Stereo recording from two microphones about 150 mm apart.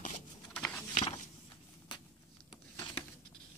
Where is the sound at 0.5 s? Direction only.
10° left (ahead or behind).